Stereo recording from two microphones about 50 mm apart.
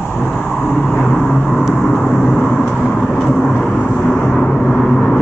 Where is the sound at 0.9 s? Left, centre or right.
Centre.